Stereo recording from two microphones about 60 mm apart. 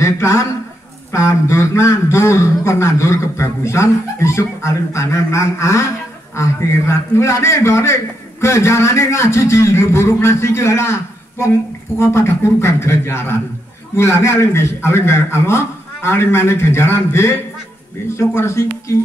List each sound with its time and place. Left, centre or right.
0.0 s a man's voice: left